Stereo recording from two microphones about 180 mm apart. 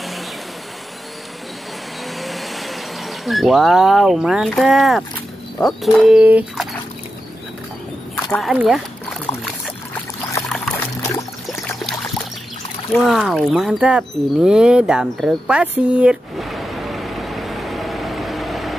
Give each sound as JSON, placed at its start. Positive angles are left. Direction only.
{"t": 2.1, "sound": "vehicle", "side_deg": 0}
{"t": 5.6, "sound": "speech", "side_deg": 0}
{"t": 8.3, "sound": "speech", "side_deg": 0}
{"t": 11.0, "sound": "trickle", "side_deg": 15}
{"t": 12.9, "sound": "a sound", "side_deg": 0}